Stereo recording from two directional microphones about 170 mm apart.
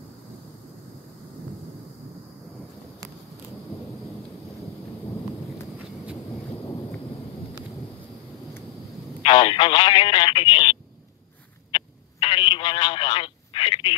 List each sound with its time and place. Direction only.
9.2 s speech: 30° left (ahead or behind)
11.7 s telephone: 30° left (ahead or behind)